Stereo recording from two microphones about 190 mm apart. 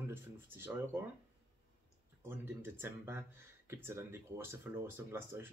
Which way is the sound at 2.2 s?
10° right (ahead or behind).